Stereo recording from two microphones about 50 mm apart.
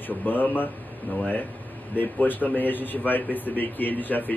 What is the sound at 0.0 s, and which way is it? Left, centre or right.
A man's voice, left.